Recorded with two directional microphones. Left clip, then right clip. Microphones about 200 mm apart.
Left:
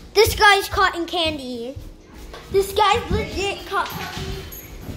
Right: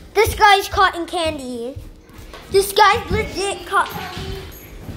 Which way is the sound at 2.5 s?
30° right (ahead or behind).